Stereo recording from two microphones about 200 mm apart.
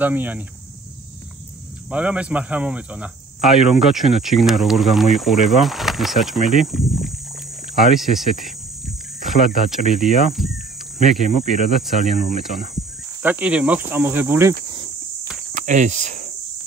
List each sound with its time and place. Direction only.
0.0 s speech: 10° right (ahead or behind)
1.9 s speech: 5° right (ahead or behind)
11.8 s speech: centre (ahead or behind)
15.5 s speech: 40° right (ahead or behind)